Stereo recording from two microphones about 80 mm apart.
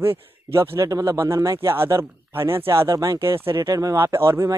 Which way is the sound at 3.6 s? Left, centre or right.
Right.